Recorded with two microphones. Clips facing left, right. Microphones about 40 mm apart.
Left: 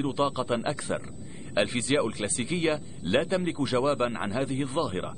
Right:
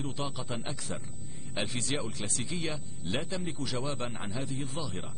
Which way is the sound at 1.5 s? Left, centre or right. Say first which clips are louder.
Left 8 dB; left.